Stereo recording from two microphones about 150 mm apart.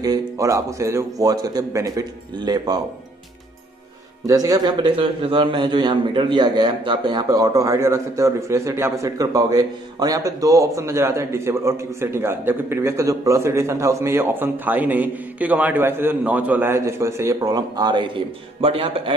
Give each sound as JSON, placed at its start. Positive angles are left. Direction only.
{"t": 0.0, "sound": "a man's voice", "side_deg": -25}
{"t": 4.3, "sound": "a man's voice", "side_deg": -25}